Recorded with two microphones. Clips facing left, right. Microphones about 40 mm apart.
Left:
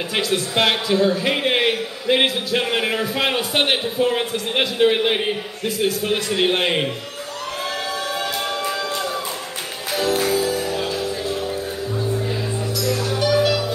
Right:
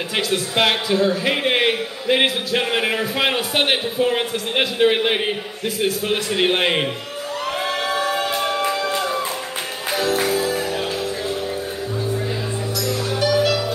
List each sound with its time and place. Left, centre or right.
0.1 s a man's voice: centre
7.7 s music: right
9.9 s music: centre
12.8 s music: centre